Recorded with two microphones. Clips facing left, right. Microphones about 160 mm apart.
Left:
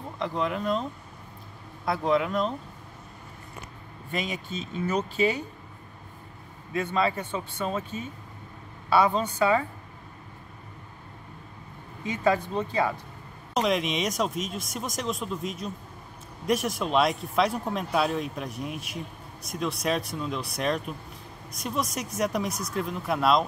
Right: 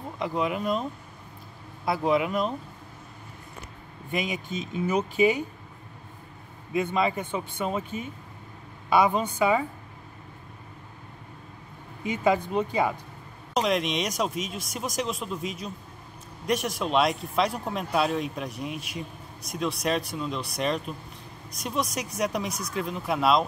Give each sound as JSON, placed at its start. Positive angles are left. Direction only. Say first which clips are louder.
{"t": 0.2, "sound": "speech", "louder": "right 1 dB", "side_deg": -5}
{"t": 1.9, "sound": "speech", "louder": "right 1 dB", "side_deg": -5}
{"t": 4.1, "sound": "speech", "louder": "right 2 dB", "side_deg": -15}
{"t": 6.7, "sound": "speech", "louder": "right 1 dB", "side_deg": -15}
{"t": 12.0, "sound": "speech", "louder": "right 1 dB", "side_deg": -15}
{"t": 13.6, "sound": "speech", "louder": "even", "side_deg": 0}